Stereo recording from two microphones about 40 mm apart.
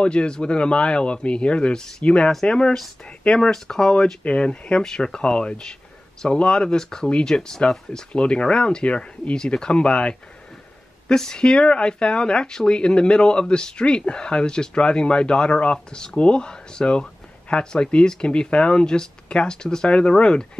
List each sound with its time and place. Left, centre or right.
0.0 s speech: left
3.5 s speech: centre
4.2 s speech: left
4.8 s speech: centre
5.2 s speech: left
7.1 s speech: left